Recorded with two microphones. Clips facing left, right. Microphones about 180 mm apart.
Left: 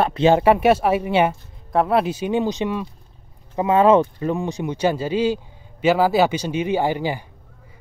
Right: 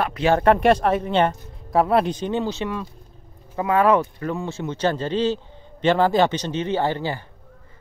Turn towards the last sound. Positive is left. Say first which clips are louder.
# left 2 dB
turn(degrees=15)  # may be behind; listen again after turning